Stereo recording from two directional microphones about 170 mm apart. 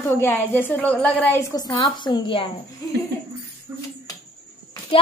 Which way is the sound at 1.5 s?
25° left (ahead or behind).